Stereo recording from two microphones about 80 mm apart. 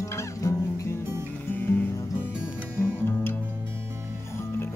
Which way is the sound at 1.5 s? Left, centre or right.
Left.